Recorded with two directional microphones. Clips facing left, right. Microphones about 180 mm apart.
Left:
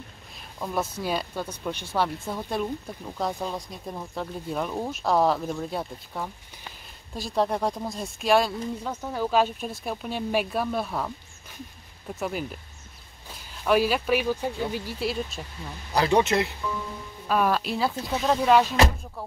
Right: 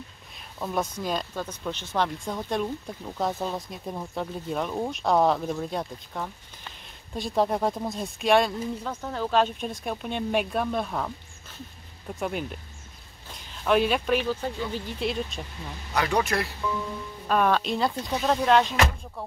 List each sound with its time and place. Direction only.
0.6 s speech: 5° right (ahead or behind)
0.9 s speech: 10° left (ahead or behind)
12.2 s speech: centre (ahead or behind)
15.9 s speech: 30° left (ahead or behind)
17.3 s speech: 5° left (ahead or behind)